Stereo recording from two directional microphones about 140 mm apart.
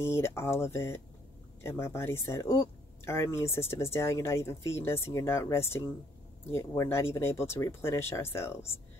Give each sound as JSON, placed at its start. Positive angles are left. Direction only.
{"t": 0.0, "sound": "speech", "side_deg": 20}